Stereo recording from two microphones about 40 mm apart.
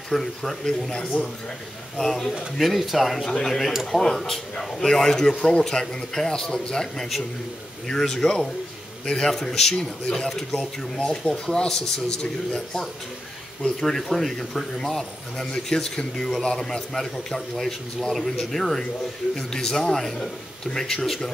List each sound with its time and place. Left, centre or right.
0.1 s speech: centre
3.3 s speech: centre
15.5 s speech: centre